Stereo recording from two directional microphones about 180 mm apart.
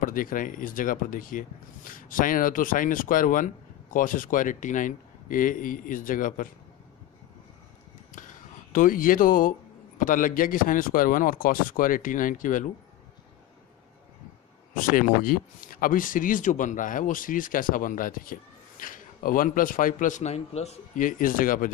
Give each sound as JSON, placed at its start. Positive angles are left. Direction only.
{"t": 0.0, "sound": "speech", "side_deg": 50}
{"t": 8.1, "sound": "a sound", "side_deg": 45}
{"t": 9.9, "sound": "speech", "side_deg": 45}
{"t": 14.8, "sound": "speech", "side_deg": 50}